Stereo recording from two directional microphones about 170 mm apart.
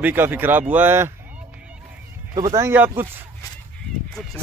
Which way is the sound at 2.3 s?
20° right (ahead or behind).